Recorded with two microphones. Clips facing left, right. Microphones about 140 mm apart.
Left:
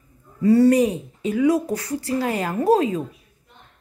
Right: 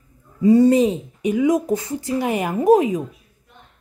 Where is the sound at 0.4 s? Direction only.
15° right (ahead or behind).